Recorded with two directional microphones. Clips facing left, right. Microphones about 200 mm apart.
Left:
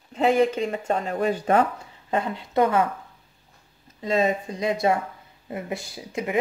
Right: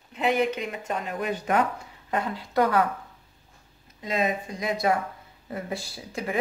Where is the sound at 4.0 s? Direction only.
30° left (ahead or behind).